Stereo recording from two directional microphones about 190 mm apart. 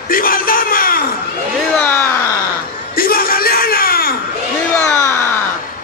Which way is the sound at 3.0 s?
50° left (ahead or behind).